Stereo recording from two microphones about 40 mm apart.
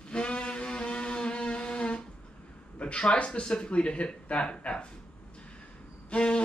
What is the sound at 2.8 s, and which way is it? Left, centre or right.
Speech, left.